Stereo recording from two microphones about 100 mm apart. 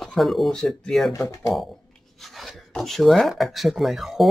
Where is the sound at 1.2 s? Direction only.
30° left (ahead or behind).